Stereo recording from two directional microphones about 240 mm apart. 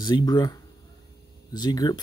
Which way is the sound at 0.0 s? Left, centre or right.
Centre.